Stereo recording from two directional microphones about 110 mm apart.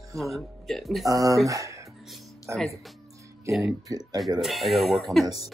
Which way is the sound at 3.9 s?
35° right (ahead or behind).